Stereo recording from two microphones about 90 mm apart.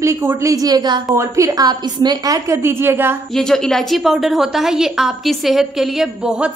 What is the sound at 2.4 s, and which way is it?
Speech, 30° right (ahead or behind).